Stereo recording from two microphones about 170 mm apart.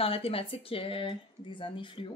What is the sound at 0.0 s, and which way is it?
Speech, 35° left (ahead or behind).